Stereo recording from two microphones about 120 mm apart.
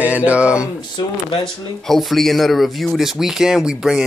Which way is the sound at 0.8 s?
40° left (ahead or behind).